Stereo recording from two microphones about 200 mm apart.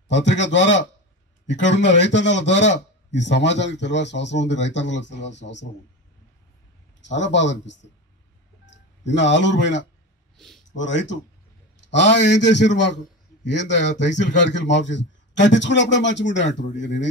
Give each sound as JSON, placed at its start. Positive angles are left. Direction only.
{"t": 0.1, "sound": "a man's voice", "side_deg": 65}
{"t": 7.0, "sound": "a man's voice", "side_deg": 65}
{"t": 10.3, "sound": "a sound", "side_deg": 0}
{"t": 10.7, "sound": "a man's voice", "side_deg": 65}